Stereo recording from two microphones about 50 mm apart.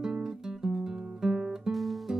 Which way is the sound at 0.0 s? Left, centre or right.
Centre.